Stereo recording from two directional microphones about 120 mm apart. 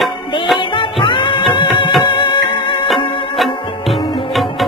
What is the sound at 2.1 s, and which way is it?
Music, 40° left (ahead or behind).